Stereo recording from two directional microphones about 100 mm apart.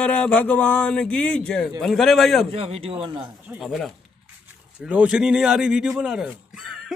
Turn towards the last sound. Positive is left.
turn(degrees=-5)  # may be behind; listen again after turning